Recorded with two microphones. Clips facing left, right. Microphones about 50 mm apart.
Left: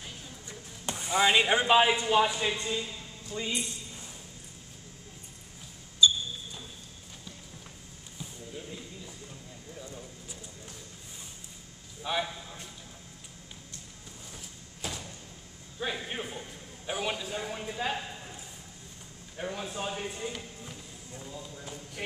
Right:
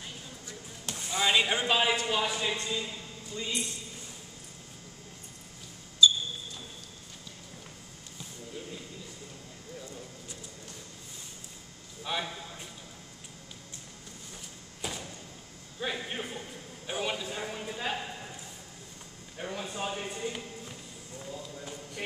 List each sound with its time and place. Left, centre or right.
0.5 s a man's voice: centre
6.0 s a sound: left
12.0 s a man's voice: centre
14.8 s thump: centre
16.1 s a man's voice: centre
19.3 s a man's voice: centre